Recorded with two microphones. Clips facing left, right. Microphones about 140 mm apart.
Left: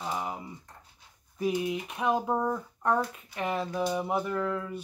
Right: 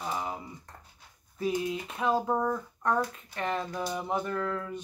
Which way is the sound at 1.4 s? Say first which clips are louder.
Left 1 dB; 15° left (ahead or behind).